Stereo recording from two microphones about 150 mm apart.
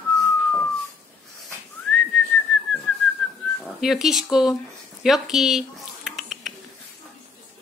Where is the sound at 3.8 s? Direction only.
Centre (ahead or behind).